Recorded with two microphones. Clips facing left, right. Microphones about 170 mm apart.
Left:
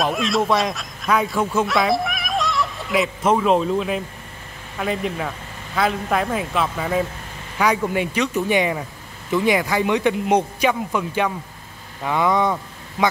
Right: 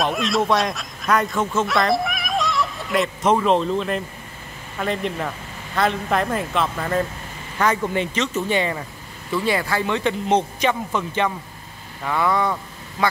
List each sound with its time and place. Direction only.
0.0 s speech: centre (ahead or behind)
1.7 s a man's voice: centre (ahead or behind); by 12.5 s 20° left (ahead or behind)